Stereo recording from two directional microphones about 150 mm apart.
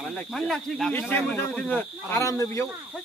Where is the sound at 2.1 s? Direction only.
20° left (ahead or behind).